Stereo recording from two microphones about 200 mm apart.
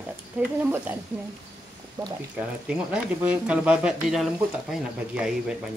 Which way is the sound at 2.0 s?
15° right (ahead or behind).